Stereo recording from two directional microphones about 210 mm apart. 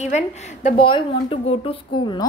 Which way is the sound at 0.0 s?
30° left (ahead or behind).